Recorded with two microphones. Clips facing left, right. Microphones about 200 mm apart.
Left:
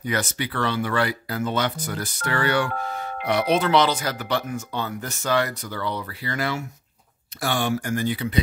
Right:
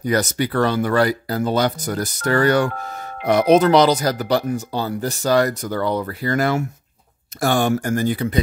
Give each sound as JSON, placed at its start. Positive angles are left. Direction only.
{"t": 0.0, "sound": "speech", "side_deg": -40}